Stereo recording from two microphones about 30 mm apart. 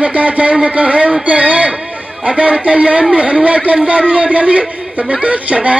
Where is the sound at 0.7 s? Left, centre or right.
Right.